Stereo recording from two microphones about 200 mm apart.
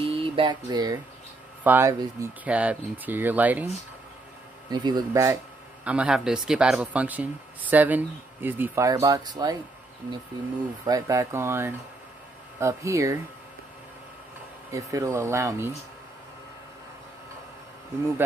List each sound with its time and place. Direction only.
0.0 s a sound: 25° right (ahead or behind)
1.6 s speech: 10° right (ahead or behind)
4.6 s speech: 20° right (ahead or behind)
10.9 s speech: 15° right (ahead or behind)
14.7 s speech: 15° right (ahead or behind)